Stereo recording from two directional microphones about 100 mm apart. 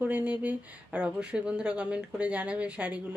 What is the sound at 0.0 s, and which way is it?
Speech, 15° right (ahead or behind).